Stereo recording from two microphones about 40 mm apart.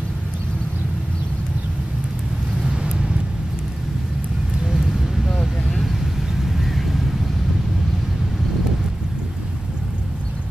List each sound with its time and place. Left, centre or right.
2.6 s vehicle: right
4.6 s vehicle: centre
6.4 s vehicle: centre